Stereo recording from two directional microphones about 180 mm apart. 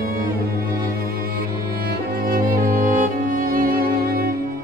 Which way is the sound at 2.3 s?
50° right (ahead or behind).